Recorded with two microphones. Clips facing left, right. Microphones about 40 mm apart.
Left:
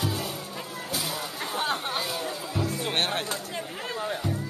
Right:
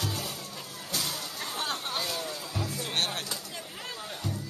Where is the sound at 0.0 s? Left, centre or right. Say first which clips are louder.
Left 4 dB; centre.